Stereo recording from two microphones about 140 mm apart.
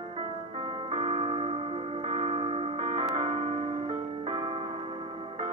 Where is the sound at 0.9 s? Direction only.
40° right (ahead or behind).